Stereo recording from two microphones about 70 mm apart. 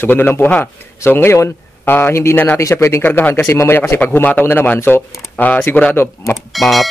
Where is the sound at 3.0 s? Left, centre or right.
Left.